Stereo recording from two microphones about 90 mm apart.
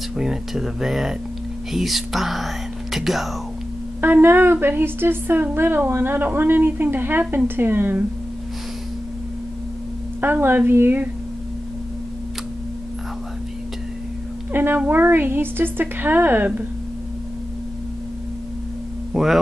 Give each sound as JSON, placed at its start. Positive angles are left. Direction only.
{"t": 0.1, "sound": "speech", "side_deg": -5}
{"t": 4.0, "sound": "a woman's voice", "side_deg": -25}
{"t": 10.2, "sound": "a woman's voice", "side_deg": -20}
{"t": 14.5, "sound": "a woman's voice", "side_deg": -25}
{"t": 19.2, "sound": "speech", "side_deg": 0}